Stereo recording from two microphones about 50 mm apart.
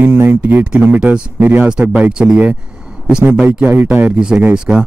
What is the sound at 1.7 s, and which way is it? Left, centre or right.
Speech, centre.